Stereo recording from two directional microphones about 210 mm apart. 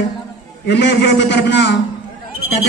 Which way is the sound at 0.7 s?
55° left (ahead or behind).